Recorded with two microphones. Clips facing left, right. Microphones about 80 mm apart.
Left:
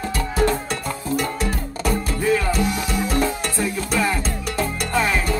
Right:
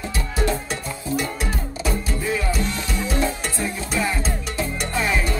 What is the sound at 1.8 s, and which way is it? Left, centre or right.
Music, left.